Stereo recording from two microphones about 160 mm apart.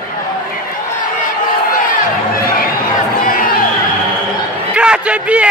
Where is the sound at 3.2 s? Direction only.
60° left (ahead or behind).